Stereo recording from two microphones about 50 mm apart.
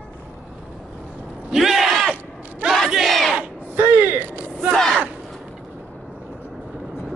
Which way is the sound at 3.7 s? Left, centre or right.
Right.